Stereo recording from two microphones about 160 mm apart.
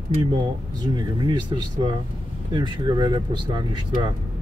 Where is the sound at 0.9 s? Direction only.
25° right (ahead or behind).